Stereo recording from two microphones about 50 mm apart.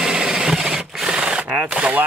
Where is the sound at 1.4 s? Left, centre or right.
Right.